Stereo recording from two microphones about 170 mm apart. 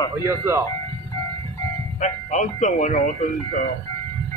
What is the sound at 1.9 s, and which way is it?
Speech, 45° left (ahead or behind).